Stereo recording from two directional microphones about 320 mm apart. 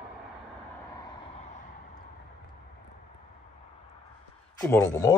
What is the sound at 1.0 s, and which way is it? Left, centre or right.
Vehicle, centre.